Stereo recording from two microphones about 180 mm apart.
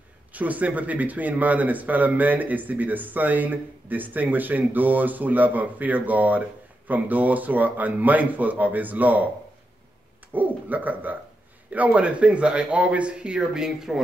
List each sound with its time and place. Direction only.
0.3 s speech: 10° right (ahead or behind)
10.3 s speech: 10° right (ahead or behind)